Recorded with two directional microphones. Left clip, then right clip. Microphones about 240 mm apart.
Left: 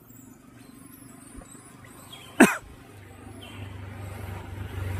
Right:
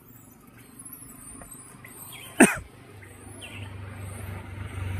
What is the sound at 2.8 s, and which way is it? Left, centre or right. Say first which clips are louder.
Vehicle: even; left.